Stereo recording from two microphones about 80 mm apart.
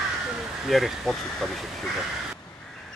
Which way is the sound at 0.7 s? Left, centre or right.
Centre.